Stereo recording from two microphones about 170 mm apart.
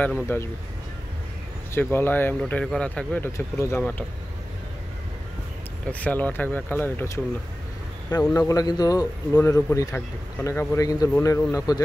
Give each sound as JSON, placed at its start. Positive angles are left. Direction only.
{"t": 0.3, "sound": "speech", "side_deg": 10}
{"t": 1.7, "sound": "speech", "side_deg": 15}
{"t": 5.9, "sound": "speech", "side_deg": 10}
{"t": 8.1, "sound": "a man's voice", "side_deg": 20}